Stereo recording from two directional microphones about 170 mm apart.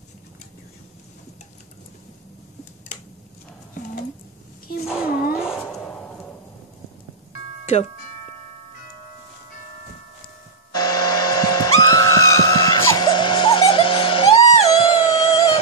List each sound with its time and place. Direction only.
4.8 s a sound: 5° right (ahead or behind)
7.6 s speech: 40° left (ahead or behind)
10.7 s vehicle: 25° left (ahead or behind)